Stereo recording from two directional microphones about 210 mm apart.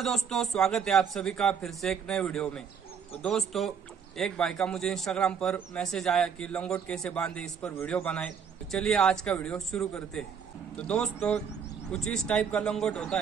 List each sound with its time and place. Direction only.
0.0 s speech: centre (ahead or behind)